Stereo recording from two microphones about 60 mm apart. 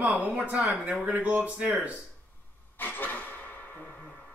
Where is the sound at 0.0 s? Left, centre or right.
Right.